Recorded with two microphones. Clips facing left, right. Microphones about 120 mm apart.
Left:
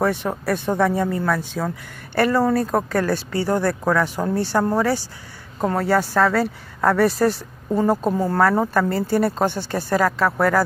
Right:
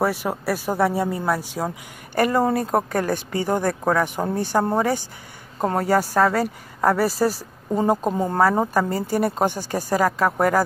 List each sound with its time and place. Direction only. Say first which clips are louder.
0.0 s speech: left 1 dB; 5° right (ahead or behind)
7.7 s speech: left 1 dB; 15° right (ahead or behind)